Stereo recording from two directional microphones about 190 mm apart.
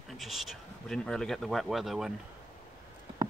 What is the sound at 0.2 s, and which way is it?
Speech, centre (ahead or behind).